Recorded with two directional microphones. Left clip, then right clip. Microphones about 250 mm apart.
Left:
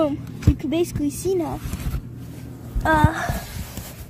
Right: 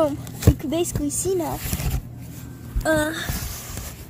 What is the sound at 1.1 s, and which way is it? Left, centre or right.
Speech, left.